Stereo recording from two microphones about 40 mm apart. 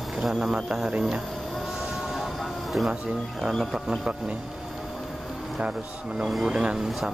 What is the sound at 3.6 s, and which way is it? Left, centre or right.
Speech, centre.